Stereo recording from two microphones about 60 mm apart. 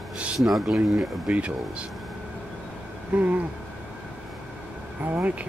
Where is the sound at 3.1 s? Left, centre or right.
Right.